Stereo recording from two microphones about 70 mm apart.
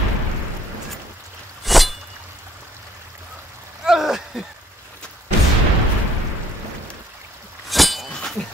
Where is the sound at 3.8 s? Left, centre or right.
Centre.